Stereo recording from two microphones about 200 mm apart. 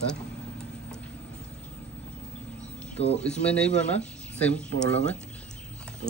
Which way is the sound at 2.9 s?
30° left (ahead or behind).